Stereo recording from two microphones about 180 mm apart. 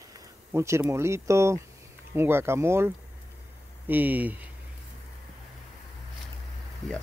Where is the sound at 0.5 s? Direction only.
15° right (ahead or behind).